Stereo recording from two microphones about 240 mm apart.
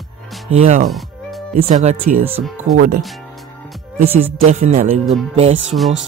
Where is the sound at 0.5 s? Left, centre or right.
Right.